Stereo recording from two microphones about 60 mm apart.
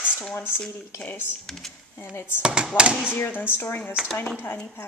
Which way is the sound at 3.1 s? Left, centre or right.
Left.